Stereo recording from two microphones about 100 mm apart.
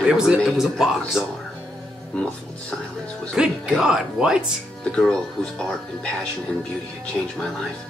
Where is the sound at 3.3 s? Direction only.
5° right (ahead or behind).